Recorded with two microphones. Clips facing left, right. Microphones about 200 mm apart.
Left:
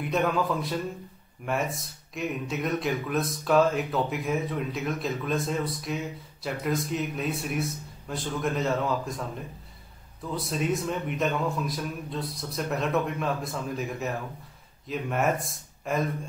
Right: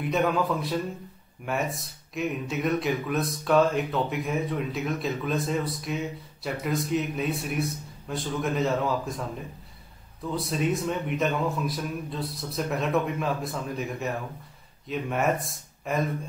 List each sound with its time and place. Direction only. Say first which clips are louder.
0.0 s speech: right 1 dB; centre (ahead or behind)
10.3 s speech: right 1 dB; centre (ahead or behind)